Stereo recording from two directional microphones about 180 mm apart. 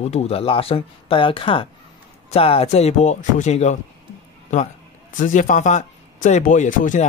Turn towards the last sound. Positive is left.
turn(degrees=45)  # may be behind; listen again after turning